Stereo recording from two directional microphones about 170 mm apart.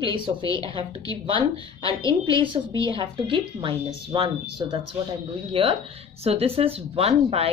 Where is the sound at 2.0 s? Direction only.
20° left (ahead or behind).